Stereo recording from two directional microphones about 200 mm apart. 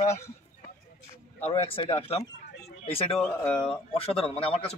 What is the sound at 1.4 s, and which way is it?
A man's voice, 30° left (ahead or behind).